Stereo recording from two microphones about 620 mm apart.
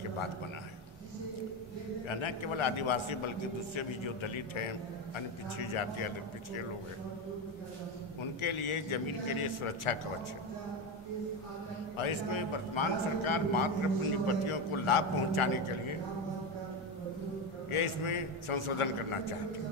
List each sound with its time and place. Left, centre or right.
2.0 s a man's voice: left
8.4 s a man's voice: left
12.0 s a man's voice: left
17.6 s a man's voice: left